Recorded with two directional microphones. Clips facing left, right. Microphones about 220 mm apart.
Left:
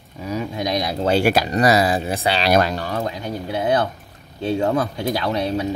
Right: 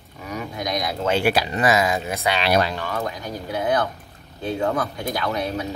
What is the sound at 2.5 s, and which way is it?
Speech, 45° left (ahead or behind).